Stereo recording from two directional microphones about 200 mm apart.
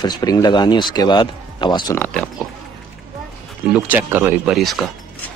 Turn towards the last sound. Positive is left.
turn(degrees=0)  # may be behind; listen again after turning